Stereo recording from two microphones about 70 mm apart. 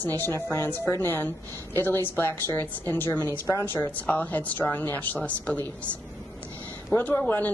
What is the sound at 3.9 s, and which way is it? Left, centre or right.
Speech, left.